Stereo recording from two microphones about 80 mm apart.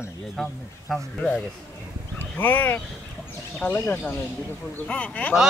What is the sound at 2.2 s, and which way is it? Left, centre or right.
Speech, left.